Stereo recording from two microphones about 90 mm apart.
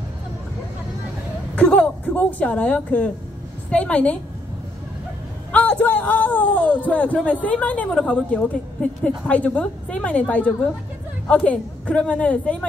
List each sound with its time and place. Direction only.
1.5 s speech: 15° left (ahead or behind)
5.5 s speech: 15° left (ahead or behind)